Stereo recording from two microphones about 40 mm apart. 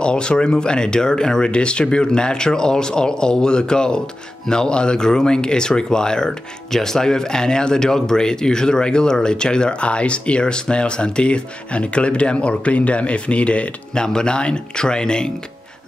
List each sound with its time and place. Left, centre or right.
0.0 s speech: left
13.9 s speech: centre